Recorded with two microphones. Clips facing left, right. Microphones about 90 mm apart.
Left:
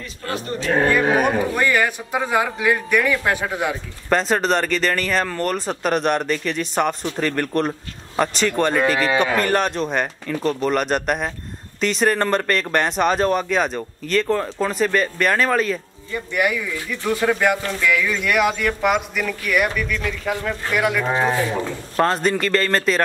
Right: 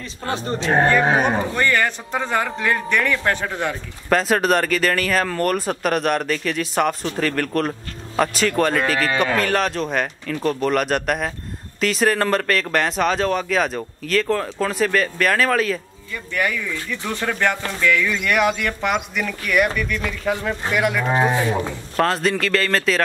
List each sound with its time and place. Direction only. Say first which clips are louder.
0.3 s speech: right 1 dB; 30° right (ahead or behind)
1.5 s speech: left 1 dB; 10° left (ahead or behind)
4.1 s speech: right 1 dB; 5° right (ahead or behind)
16.1 s speech: left 2 dB; 15° left (ahead or behind)